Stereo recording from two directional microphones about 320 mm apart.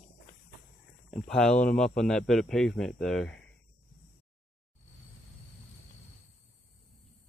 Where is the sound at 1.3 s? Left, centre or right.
Centre.